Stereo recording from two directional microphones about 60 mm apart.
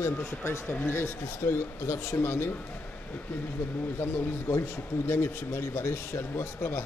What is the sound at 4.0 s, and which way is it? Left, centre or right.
Speech, left.